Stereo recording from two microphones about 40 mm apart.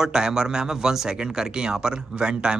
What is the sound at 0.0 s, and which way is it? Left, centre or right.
Speech, centre.